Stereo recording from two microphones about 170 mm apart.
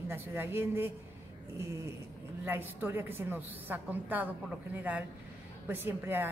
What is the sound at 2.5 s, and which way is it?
A woman's voice, 10° right (ahead or behind).